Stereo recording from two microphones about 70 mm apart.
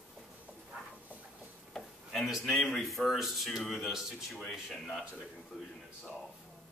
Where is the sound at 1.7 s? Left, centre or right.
Centre.